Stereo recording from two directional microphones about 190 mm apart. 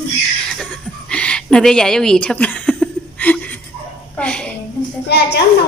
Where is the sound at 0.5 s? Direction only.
5° left (ahead or behind).